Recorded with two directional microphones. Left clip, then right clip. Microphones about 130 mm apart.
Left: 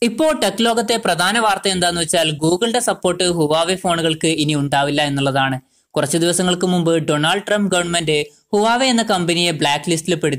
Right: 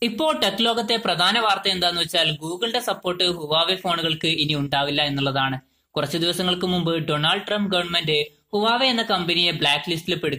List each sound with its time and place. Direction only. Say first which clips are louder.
0.0 s speech: left 5 dB; 40° left (ahead or behind)